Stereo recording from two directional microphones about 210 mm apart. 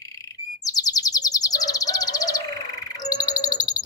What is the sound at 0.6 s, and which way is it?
Bird, 15° left (ahead or behind).